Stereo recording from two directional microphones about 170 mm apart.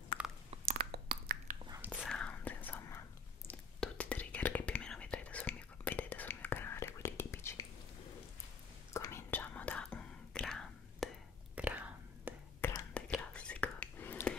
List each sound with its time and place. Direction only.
0.2 s chewing: 5° right (ahead or behind)
0.7 s a sound: 60° right (ahead or behind)
2.0 s whispering: 5° left (ahead or behind)
8.9 s whispering: 15° left (ahead or behind)
11.5 s whispering: 10° right (ahead or behind)
12.5 s whispering: 10° left (ahead or behind)